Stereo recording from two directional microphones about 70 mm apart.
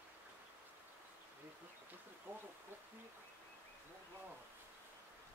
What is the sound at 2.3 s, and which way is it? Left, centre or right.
Insect, right.